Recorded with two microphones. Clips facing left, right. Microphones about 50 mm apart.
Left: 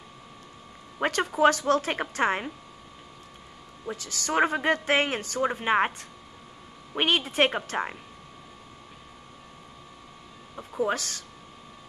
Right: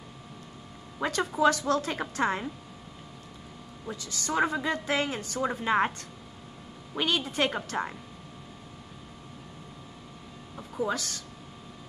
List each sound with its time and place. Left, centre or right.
1.0 s a sound: left
1.4 s a woman's voice: left
3.9 s a woman's voice: left
5.4 s speech: left
7.0 s a woman's voice: left
10.5 s a sound: left
10.8 s a woman's voice: left